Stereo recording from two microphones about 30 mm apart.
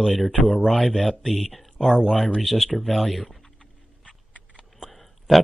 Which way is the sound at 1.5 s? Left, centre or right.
Centre.